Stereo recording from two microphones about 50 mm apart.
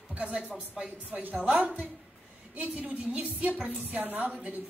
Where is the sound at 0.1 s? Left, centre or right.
Right.